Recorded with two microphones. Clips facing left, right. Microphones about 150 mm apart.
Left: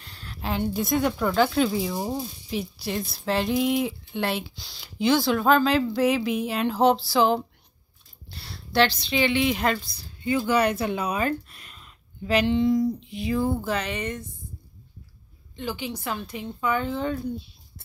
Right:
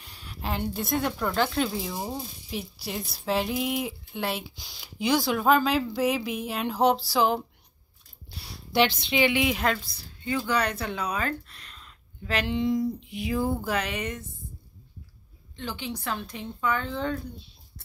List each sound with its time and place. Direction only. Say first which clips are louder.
0.0 s speech: left 2 dB; 5° right (ahead or behind)
10.5 s speech: left 6 dB; 10° left (ahead or behind)
12.4 s speech: left 3 dB; 15° right (ahead or behind)
13.3 s speech: left 2 dB; 5° right (ahead or behind)
15.5 s speech: left 3 dB; 5° left (ahead or behind)